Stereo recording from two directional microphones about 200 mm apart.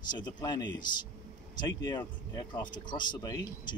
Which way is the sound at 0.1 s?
20° left (ahead or behind).